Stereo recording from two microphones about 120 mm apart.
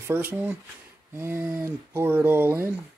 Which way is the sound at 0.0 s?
15° right (ahead or behind).